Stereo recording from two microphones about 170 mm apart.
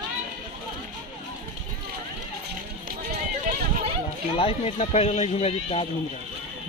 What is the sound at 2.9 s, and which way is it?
Run, 55° right (ahead or behind).